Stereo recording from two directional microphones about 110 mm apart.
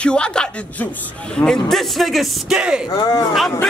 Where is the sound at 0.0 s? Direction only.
10° left (ahead or behind); by 2.8 s 10° right (ahead or behind).